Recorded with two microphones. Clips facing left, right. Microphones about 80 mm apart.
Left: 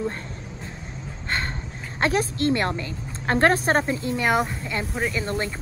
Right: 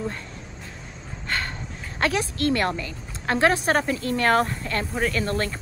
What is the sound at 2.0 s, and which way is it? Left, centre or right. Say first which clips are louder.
A woman's voice: left 2 dB; left.